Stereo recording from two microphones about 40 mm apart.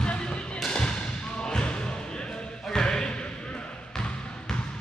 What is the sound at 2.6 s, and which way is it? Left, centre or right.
Basketball bounce, centre.